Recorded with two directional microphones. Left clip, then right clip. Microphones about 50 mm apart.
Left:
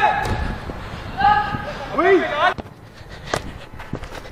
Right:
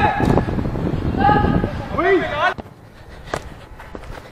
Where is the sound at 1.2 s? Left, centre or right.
Centre.